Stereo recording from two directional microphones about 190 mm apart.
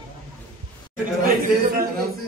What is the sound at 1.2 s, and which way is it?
Chatter, 50° right (ahead or behind).